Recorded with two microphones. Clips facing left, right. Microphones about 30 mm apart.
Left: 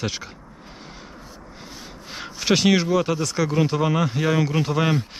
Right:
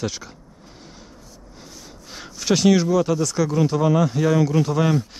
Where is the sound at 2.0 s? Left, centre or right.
Left.